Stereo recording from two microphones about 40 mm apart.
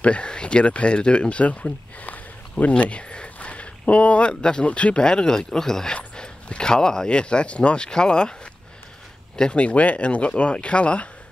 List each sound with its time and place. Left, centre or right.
0.0 s speech: left
3.3 s a sound: left
4.6 s speech: left
5.0 s speech: centre
6.1 s a sound: left
7.1 s speech: left
9.4 s speech: left